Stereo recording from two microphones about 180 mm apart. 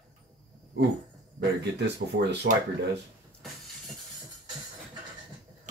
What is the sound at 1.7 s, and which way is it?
Speech, 70° right (ahead or behind).